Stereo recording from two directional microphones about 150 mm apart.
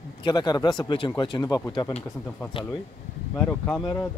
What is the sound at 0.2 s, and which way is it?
Speech, 30° left (ahead or behind).